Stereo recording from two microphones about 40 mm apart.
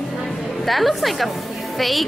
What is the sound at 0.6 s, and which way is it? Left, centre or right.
Speech, centre.